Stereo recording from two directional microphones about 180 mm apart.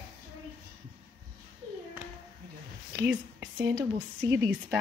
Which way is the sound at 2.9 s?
10° right (ahead or behind).